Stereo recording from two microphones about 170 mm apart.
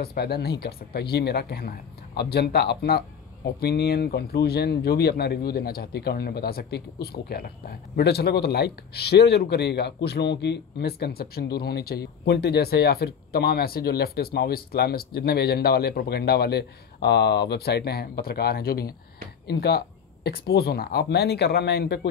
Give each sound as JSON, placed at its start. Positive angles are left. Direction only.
{"t": 0.0, "sound": "speech", "side_deg": 65}